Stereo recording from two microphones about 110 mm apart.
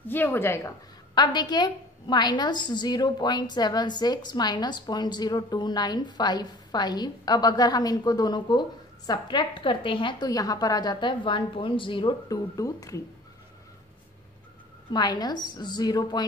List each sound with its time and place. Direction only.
0.1 s a woman's voice: 20° left (ahead or behind)
1.1 s a woman's voice: 40° left (ahead or behind)
10.3 s a woman's voice: 35° left (ahead or behind)
12.3 s a woman's voice: 30° left (ahead or behind)
14.9 s a woman's voice: 40° left (ahead or behind)